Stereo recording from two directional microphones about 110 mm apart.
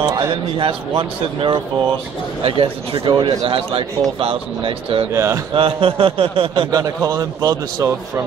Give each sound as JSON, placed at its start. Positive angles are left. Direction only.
{"t": 0.0, "sound": "a man's voice", "side_deg": -35}
{"t": 0.3, "sound": "a man's voice", "side_deg": -55}
{"t": 5.1, "sound": "speech", "side_deg": -25}
{"t": 5.5, "sound": "speech", "side_deg": -55}
{"t": 6.7, "sound": "a man's voice", "side_deg": -35}